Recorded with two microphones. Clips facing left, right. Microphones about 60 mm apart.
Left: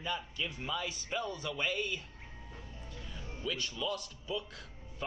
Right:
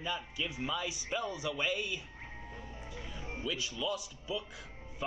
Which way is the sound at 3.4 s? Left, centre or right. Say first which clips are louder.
Even; centre.